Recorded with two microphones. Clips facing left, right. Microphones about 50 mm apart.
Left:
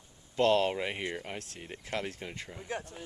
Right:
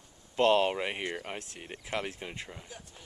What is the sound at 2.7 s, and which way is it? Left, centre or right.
Speech, left.